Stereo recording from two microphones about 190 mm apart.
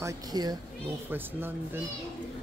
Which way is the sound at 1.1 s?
10° right (ahead or behind).